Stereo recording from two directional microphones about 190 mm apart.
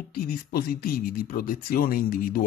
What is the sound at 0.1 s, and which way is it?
Speech, 55° left (ahead or behind).